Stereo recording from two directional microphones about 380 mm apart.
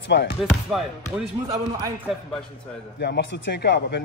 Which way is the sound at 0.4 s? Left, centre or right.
Centre.